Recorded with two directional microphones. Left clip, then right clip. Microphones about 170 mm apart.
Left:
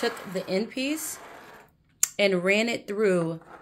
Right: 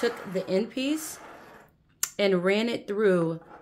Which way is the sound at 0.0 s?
15° right (ahead or behind).